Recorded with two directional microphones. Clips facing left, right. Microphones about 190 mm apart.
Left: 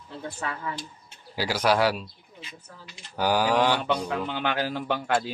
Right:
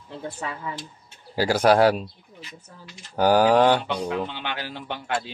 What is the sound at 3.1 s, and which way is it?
Speech, 50° right (ahead or behind).